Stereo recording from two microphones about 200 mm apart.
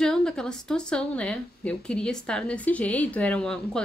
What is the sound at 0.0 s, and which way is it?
A woman's voice, 5° left (ahead or behind).